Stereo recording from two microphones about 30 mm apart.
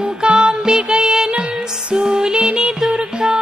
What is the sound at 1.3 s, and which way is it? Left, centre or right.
Music, right.